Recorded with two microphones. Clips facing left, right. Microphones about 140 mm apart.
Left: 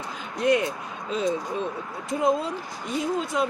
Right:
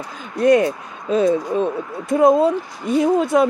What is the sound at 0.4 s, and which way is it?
Speech, 45° right (ahead or behind).